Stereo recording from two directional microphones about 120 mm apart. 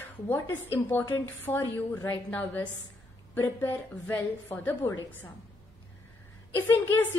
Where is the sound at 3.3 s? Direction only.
20° left (ahead or behind).